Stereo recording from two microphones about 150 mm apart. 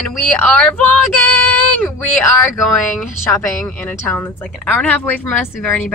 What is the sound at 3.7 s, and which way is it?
A woman's voice, 10° left (ahead or behind).